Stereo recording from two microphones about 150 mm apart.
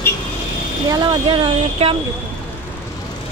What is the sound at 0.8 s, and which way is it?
Speech, 25° right (ahead or behind).